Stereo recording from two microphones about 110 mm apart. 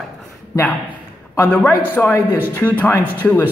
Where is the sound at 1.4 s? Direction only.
15° left (ahead or behind).